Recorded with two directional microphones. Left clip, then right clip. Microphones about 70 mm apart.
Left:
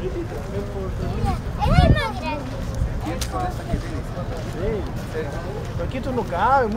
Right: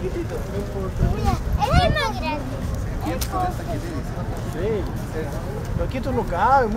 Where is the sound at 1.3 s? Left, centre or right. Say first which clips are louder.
Right 2 dB; right.